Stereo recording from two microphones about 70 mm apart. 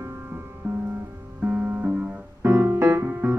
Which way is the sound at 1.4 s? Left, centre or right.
Right.